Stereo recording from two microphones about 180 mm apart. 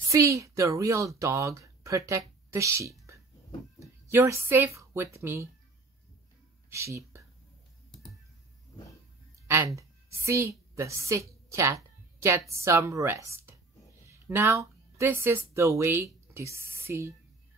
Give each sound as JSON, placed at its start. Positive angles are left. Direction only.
{"t": 0.1, "sound": "speech", "side_deg": -15}
{"t": 6.7, "sound": "speech", "side_deg": -15}
{"t": 9.8, "sound": "a woman's voice", "side_deg": -15}